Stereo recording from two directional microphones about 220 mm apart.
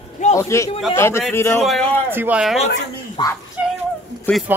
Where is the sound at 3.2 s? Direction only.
20° left (ahead or behind).